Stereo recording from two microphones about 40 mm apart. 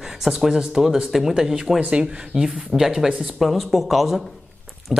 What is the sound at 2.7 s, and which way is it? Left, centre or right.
Speech, centre.